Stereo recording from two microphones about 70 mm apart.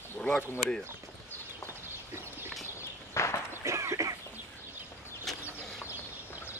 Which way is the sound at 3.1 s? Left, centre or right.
Left.